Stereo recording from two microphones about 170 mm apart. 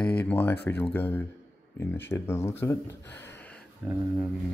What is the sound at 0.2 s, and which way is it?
Speech, 10° left (ahead or behind).